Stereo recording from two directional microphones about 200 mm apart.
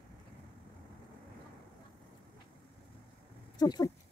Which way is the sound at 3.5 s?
20° left (ahead or behind).